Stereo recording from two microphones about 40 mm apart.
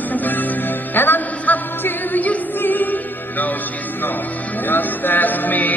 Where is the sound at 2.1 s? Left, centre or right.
Left.